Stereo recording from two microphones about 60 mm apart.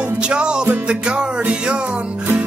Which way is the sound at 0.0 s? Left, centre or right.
Centre.